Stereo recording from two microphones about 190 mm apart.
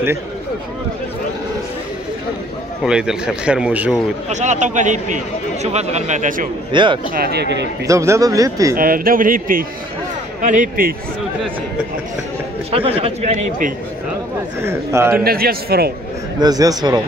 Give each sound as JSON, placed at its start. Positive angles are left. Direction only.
{"t": 2.8, "sound": "speech", "side_deg": -5}
{"t": 4.3, "sound": "speech", "side_deg": -40}
{"t": 6.7, "sound": "a man's voice", "side_deg": -25}
{"t": 7.2, "sound": "speech", "side_deg": -60}
{"t": 7.8, "sound": "speech", "side_deg": -15}
{"t": 8.7, "sound": "a man's voice", "side_deg": -50}
{"t": 12.7, "sound": "speech", "side_deg": -30}
{"t": 14.6, "sound": "speech", "side_deg": -15}
{"t": 15.2, "sound": "a man's voice", "side_deg": -50}
{"t": 16.3, "sound": "a man's voice", "side_deg": -20}